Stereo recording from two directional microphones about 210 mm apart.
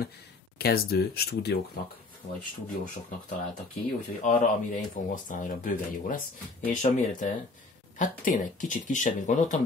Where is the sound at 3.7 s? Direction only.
40° left (ahead or behind).